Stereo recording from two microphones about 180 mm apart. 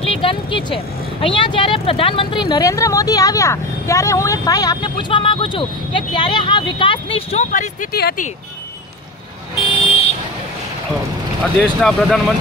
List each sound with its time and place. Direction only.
0.1 s vehicle: 30° left (ahead or behind)
1.2 s speech: 25° left (ahead or behind); by 8.3 s 60° left (ahead or behind)
9.7 s vehicle: 30° left (ahead or behind)
11.6 s speech: centre (ahead or behind)